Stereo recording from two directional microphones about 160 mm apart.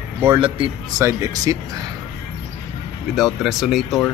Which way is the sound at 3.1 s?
Centre (ahead or behind).